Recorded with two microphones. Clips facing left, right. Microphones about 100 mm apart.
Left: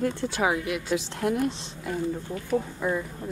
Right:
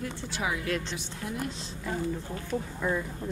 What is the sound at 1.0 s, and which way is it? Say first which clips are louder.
Speech: left 10 dB; 65° left (ahead or behind).